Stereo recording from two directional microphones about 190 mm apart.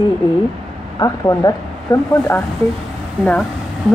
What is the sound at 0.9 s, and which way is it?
Speech, 20° left (ahead or behind).